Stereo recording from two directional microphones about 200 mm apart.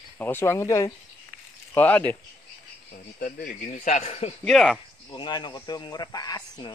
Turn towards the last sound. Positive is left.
turn(degrees=20)  # may be behind; listen again after turning